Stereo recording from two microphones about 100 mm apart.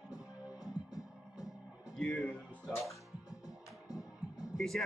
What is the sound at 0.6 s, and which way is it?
Music, 35° left (ahead or behind).